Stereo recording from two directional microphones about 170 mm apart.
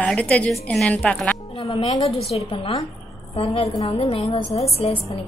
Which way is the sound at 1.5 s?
30° left (ahead or behind).